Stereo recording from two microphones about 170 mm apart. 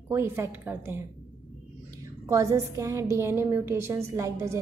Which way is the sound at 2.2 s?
15° right (ahead or behind).